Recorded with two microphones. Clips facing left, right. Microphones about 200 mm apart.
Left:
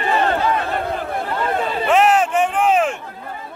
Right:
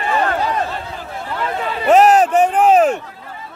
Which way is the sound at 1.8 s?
40° right (ahead or behind).